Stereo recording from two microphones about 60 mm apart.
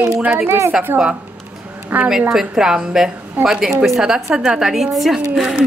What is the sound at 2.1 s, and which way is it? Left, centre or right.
Speech, centre.